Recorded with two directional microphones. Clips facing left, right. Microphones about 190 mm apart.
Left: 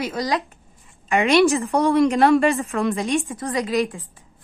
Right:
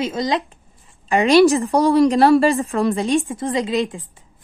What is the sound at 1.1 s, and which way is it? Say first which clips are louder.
A woman's voice: right 4 dB; 35° right (ahead or behind).